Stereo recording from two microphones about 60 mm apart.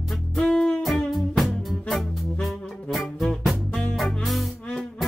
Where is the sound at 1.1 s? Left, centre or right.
Centre.